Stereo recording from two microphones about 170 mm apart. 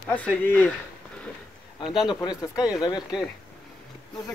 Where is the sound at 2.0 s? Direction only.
25° left (ahead or behind).